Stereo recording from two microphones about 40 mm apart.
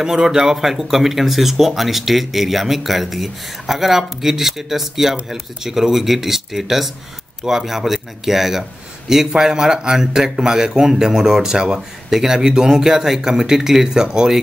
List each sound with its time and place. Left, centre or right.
0.0 s speech: centre